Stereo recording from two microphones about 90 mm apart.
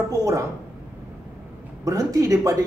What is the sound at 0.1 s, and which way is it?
Speech, 35° right (ahead or behind).